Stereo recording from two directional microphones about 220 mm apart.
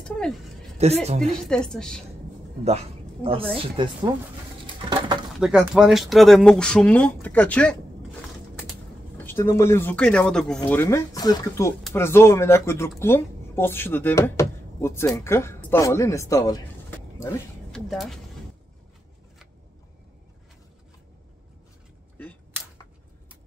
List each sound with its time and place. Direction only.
0.7 s speech: 30° right (ahead or behind)
1.2 s speech: centre (ahead or behind)
3.5 s speech: 20° right (ahead or behind)
4.6 s patter: 20° right (ahead or behind)
5.4 s speech: 5° right (ahead or behind)
9.2 s speech: 10° left (ahead or behind)